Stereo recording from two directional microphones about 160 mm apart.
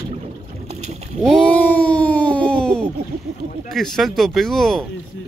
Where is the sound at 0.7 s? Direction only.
45° right (ahead or behind).